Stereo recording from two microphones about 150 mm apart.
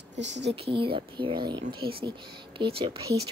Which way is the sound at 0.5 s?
35° right (ahead or behind).